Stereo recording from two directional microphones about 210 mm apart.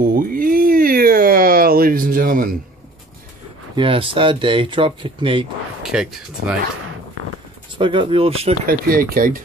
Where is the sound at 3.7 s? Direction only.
25° right (ahead or behind).